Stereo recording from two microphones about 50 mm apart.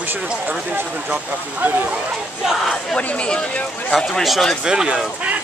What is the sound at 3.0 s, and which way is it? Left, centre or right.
Speech, left.